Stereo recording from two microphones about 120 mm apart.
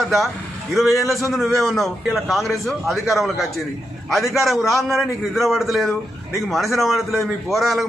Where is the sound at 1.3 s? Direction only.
Centre (ahead or behind).